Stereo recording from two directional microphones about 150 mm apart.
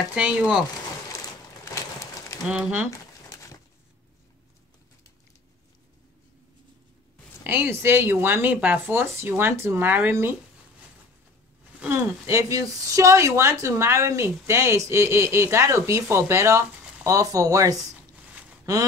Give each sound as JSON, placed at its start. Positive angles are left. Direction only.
{"t": 0.1, "sound": "speech", "side_deg": -5}
{"t": 1.1, "sound": "a sound", "side_deg": 20}
{"t": 2.4, "sound": "speech", "side_deg": -5}
{"t": 7.4, "sound": "speech", "side_deg": -15}
{"t": 11.8, "sound": "speech", "side_deg": -15}